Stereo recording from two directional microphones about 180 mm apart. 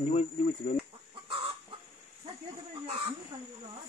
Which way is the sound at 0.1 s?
35° left (ahead or behind).